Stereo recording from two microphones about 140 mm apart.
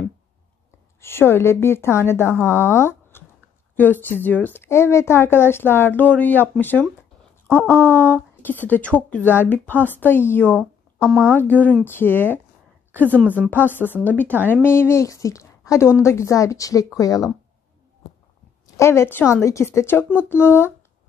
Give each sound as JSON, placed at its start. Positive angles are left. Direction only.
{"t": 1.0, "sound": "a woman's voice", "side_deg": 15}
{"t": 12.9, "sound": "a woman's voice", "side_deg": -15}
{"t": 13.7, "sound": "a woman's voice", "side_deg": 15}
{"t": 18.8, "sound": "a woman's voice", "side_deg": 20}